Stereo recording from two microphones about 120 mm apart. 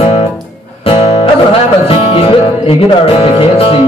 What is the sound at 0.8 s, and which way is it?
Music, 50° left (ahead or behind).